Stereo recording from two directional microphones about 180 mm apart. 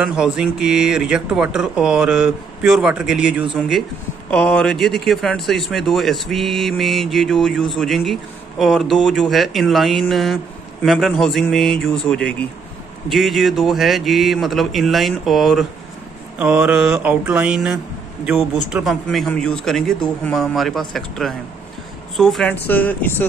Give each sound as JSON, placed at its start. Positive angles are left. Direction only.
{"t": 0.0, "sound": "speech", "side_deg": -5}
{"t": 16.3, "sound": "mantra", "side_deg": -5}
{"t": 18.2, "sound": "speech", "side_deg": 0}